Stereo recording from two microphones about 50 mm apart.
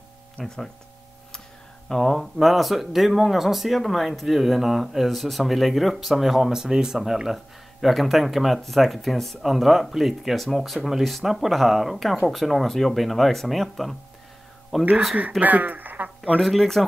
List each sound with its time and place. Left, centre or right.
0.4 s speech: left
1.9 s speech: centre
15.4 s speech: right
16.3 s speech: centre